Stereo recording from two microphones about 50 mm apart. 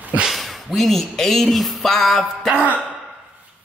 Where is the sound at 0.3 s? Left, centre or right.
Centre.